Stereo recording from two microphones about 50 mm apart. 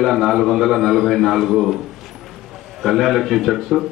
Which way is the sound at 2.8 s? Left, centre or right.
Centre.